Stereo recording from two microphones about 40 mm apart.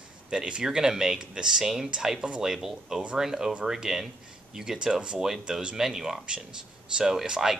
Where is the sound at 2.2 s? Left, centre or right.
Right.